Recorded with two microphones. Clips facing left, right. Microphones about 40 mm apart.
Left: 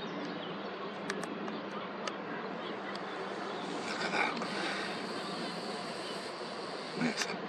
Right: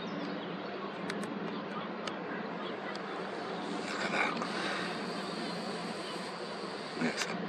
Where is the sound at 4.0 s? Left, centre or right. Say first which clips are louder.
Right 1 dB; centre.